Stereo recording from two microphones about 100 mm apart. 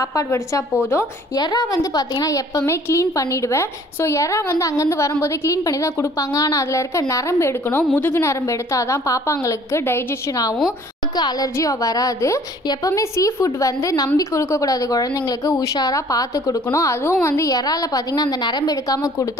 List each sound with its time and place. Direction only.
0.1 s a woman's voice: 30° left (ahead or behind)
11.1 s a woman's voice: 45° left (ahead or behind)